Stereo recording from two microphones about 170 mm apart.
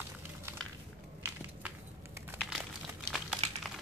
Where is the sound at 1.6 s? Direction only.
10° right (ahead or behind).